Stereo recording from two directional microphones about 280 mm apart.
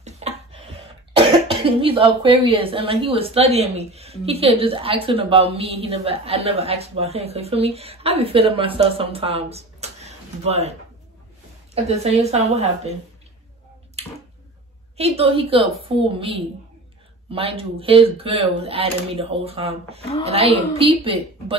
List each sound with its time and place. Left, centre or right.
0.0 s a sound: right
1.1 s speech: centre
14.0 s a sound: right
15.0 s speech: right
20.0 s a woman's voice: left
20.2 s speech: right